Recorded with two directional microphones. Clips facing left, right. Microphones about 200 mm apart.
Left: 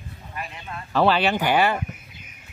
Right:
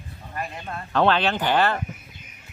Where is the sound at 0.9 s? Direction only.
5° left (ahead or behind).